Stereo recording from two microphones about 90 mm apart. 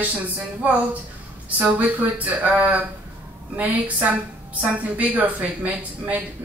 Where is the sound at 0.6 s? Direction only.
20° right (ahead or behind).